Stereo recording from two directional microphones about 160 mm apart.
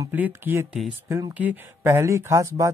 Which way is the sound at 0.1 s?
10° right (ahead or behind).